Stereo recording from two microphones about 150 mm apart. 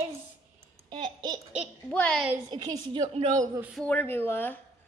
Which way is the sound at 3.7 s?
10° left (ahead or behind).